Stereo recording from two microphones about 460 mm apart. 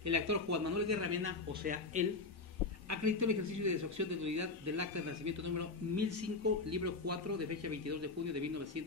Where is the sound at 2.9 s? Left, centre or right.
Right.